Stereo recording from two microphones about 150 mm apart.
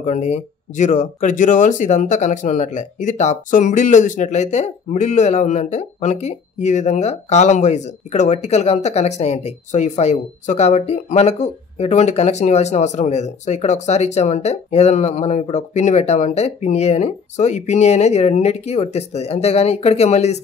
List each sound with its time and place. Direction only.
0.0 s speech: 50° left (ahead or behind)